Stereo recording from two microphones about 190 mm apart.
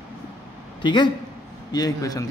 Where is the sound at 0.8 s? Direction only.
25° left (ahead or behind).